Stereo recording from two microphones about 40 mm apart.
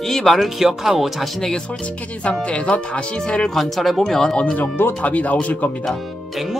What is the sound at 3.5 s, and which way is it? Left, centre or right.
Speech, centre.